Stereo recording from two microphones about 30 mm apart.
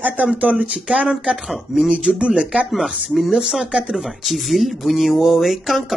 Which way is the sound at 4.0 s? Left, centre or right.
Centre.